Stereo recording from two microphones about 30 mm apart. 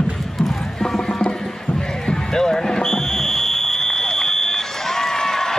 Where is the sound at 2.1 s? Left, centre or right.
Left.